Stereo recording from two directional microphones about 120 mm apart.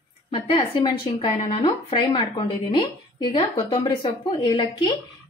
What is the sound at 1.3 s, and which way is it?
Speech, 60° left (ahead or behind).